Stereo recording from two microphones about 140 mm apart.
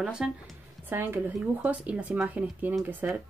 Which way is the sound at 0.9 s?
15° right (ahead or behind).